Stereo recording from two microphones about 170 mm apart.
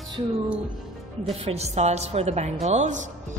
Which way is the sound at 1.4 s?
35° right (ahead or behind).